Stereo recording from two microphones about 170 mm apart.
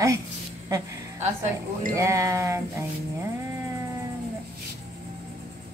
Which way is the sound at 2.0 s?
20° right (ahead or behind).